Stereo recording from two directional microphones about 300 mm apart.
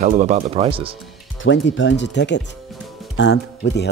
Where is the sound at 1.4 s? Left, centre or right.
Left.